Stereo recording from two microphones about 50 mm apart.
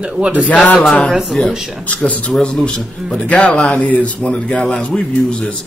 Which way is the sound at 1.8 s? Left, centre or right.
Left.